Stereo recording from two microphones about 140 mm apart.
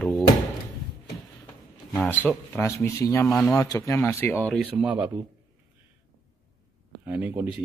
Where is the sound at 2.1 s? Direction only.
15° left (ahead or behind).